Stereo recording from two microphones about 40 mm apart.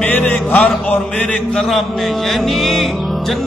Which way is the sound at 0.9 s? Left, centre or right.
Left.